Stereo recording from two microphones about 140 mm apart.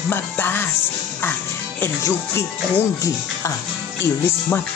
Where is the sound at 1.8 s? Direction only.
20° left (ahead or behind).